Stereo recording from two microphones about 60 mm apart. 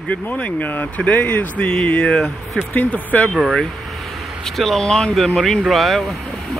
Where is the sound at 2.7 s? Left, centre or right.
Left.